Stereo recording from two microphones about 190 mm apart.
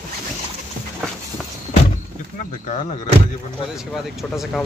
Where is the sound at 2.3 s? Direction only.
35° left (ahead or behind).